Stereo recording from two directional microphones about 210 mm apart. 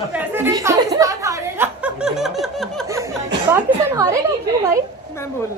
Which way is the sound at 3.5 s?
15° right (ahead or behind).